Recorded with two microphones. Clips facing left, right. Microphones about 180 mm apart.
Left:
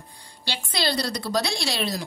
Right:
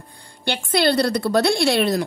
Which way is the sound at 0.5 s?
55° right (ahead or behind).